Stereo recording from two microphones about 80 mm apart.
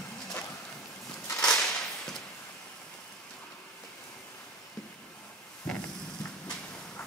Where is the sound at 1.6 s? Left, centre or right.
Centre.